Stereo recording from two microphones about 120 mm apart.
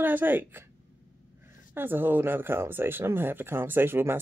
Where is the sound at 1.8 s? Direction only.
15° right (ahead or behind).